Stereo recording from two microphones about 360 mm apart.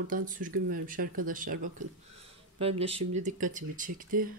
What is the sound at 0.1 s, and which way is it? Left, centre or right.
Speech, right.